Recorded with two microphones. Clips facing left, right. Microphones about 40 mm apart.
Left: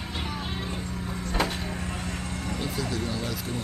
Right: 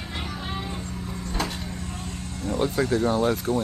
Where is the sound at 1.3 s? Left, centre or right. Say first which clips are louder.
Left 2 dB; centre.